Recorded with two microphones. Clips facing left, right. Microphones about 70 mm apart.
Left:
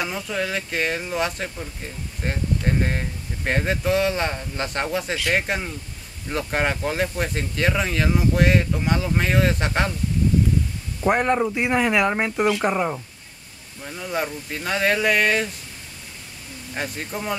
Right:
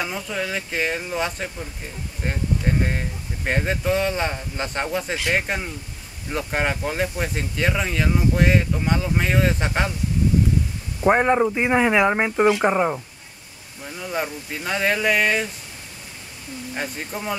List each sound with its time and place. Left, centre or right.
0.0 s speech: centre
11.0 s speech: centre
13.8 s speech: centre
16.7 s speech: centre